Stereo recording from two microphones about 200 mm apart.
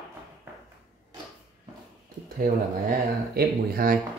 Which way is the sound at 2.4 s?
50° right (ahead or behind).